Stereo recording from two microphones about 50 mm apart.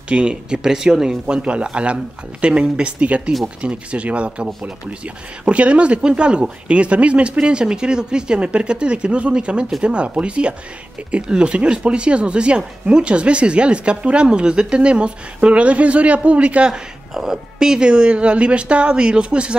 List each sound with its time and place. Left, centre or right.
0.1 s speech: right
1.2 s speech: right
16.7 s speech: centre